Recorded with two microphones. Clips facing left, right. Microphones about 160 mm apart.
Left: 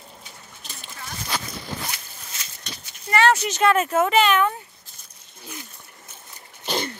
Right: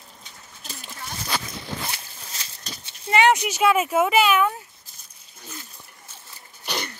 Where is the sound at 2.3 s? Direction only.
30° right (ahead or behind).